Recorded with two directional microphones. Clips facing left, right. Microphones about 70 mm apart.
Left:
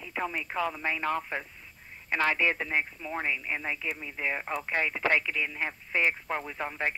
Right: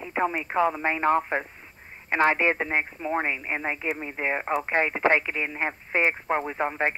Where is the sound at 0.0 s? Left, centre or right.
Right.